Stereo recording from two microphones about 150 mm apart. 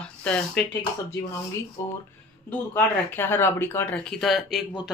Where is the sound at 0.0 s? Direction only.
5° left (ahead or behind).